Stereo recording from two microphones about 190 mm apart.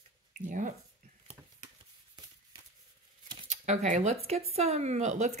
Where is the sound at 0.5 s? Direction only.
40° right (ahead or behind).